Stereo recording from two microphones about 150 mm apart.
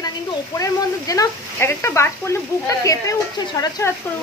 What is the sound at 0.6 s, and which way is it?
Speech, 25° left (ahead or behind).